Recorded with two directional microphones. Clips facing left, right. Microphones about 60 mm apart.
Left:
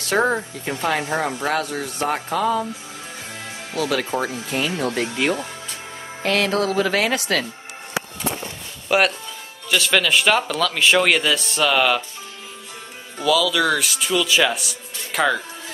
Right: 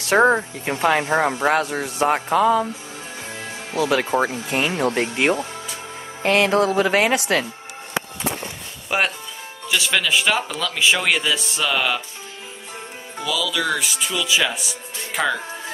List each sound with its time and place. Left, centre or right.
0.2 s speech: right
6.2 s music: right
9.7 s speech: centre
13.2 s speech: centre